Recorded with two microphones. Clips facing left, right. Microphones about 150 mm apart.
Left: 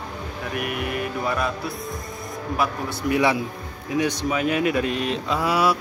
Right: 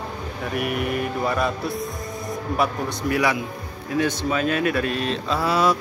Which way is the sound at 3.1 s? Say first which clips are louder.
Left 2 dB; 25° left (ahead or behind).